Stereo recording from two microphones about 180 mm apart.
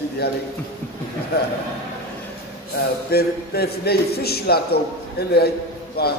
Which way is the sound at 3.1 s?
60° left (ahead or behind).